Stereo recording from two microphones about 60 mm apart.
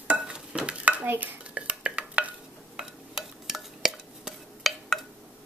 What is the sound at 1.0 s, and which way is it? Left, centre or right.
Dishes, right.